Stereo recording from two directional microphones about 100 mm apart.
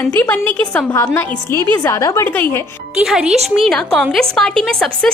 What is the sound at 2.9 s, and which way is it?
A woman's voice, 10° right (ahead or behind).